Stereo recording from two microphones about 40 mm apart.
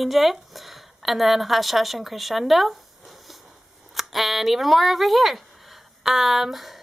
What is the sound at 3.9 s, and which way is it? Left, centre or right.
A woman's voice, centre.